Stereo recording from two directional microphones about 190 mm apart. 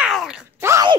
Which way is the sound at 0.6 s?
15° right (ahead or behind).